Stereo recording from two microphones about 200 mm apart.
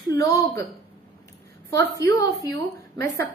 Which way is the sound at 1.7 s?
15° left (ahead or behind).